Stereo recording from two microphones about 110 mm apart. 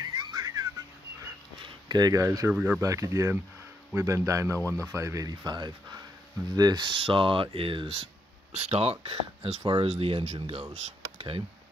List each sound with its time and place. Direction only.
0.0 s whistling: 35° right (ahead or behind)
1.6 s speech: 40° right (ahead or behind)
2.5 s speech: 10° right (ahead or behind)
2.8 s speech: 30° right (ahead or behind); by 8.1 s 55° right (ahead or behind)
8.5 s speech: 75° right (ahead or behind); by 11.4 s 60° right (ahead or behind)